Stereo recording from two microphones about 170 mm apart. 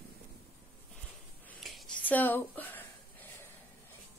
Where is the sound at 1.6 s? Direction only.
5° left (ahead or behind).